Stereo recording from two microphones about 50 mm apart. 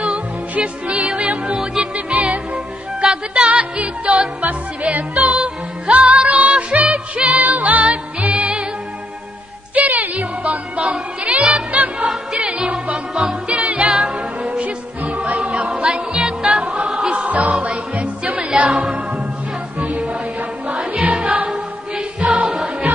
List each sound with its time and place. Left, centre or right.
0.0 s music: right
4.4 s music: right
9.8 s music: right
12.1 s music: centre
13.1 s music: centre
13.5 s music: right
15.3 s music: centre
19.9 s music: right